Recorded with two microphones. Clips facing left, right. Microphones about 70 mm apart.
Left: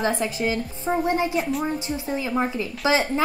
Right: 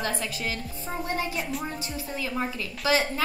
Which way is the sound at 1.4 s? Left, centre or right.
Centre.